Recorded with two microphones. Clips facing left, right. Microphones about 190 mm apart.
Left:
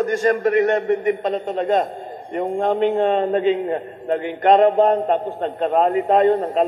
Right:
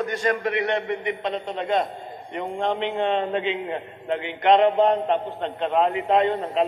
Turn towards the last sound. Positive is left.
turn(degrees=45)  # may be behind; listen again after turning